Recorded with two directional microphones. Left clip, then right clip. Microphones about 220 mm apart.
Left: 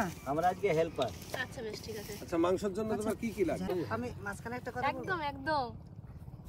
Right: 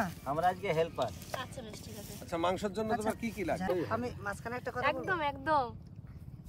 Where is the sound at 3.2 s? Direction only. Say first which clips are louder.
Left 1 dB; 5° right (ahead or behind).